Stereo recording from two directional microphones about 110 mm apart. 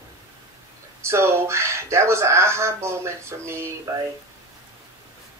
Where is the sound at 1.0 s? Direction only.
25° right (ahead or behind).